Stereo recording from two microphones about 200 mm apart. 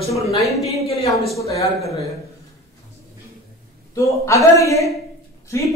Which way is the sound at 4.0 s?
15° left (ahead or behind).